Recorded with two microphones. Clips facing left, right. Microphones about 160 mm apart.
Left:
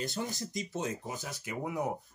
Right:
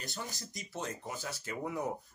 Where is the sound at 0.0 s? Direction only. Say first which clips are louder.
Left 7 dB; 20° left (ahead or behind).